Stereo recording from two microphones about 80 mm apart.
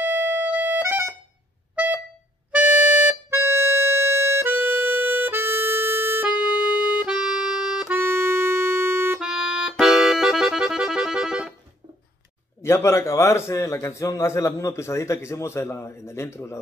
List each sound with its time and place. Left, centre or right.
0.0 s music: right
2.5 s music: right
3.3 s harmonica: right
6.5 s music: left
7.0 s music: centre
7.9 s accordion: right
9.2 s accordion: centre
12.6 s a man's voice: left